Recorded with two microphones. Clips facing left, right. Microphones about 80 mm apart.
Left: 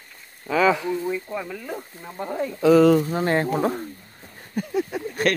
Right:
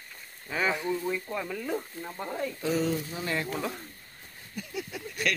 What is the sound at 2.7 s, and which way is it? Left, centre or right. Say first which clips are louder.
Speech: left 14 dB; left.